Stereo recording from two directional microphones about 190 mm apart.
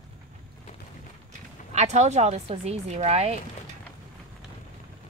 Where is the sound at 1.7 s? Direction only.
35° right (ahead or behind).